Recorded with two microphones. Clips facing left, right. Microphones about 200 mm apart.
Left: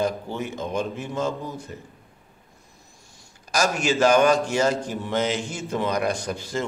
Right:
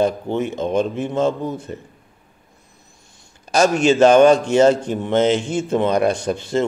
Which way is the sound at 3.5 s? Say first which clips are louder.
Right 8 dB; 25° right (ahead or behind).